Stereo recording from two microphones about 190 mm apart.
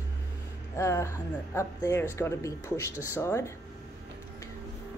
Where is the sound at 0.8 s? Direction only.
15° left (ahead or behind).